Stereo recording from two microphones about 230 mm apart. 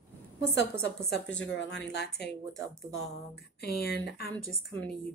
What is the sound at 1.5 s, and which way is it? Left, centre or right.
Speech, left.